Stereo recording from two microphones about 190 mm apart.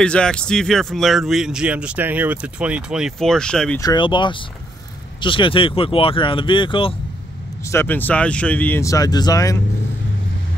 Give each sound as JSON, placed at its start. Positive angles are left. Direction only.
{"t": 0.0, "sound": "a man's voice", "side_deg": 5}
{"t": 3.8, "sound": "speech", "side_deg": 25}
{"t": 7.7, "sound": "speech", "side_deg": 10}